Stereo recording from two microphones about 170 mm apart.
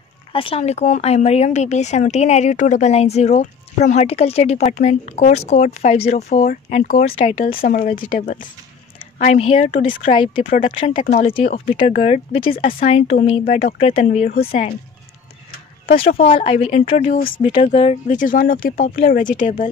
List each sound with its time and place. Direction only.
0.3 s speech: 30° left (ahead or behind)
6.8 s speech: 60° left (ahead or behind)
7.2 s speech: 35° left (ahead or behind)
7.5 s speech: 55° left (ahead or behind)
9.2 s speech: 35° left (ahead or behind)
10.4 s speech: 55° left (ahead or behind); by 14.8 s 35° left (ahead or behind)
16.2 s speech: 35° left (ahead or behind)
17.3 s speech: 30° left (ahead or behind); by 19.5 s 50° left (ahead or behind)